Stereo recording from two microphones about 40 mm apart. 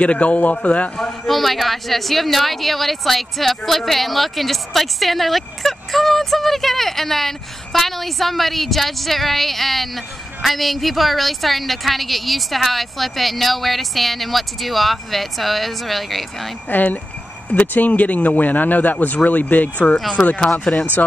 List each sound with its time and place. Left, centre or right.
0.0 s speech: left
1.2 s a woman's voice: centre
16.6 s speech: left